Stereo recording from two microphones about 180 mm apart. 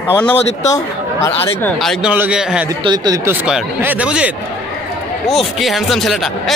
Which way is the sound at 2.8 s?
25° right (ahead or behind).